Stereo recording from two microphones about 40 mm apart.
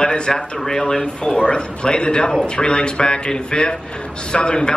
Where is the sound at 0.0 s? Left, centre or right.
Centre.